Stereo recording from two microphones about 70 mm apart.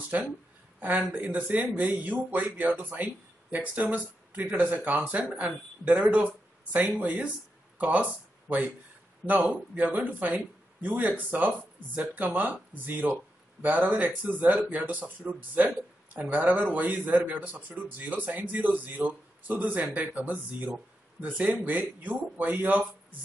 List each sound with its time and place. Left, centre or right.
0.1 s a man's voice: right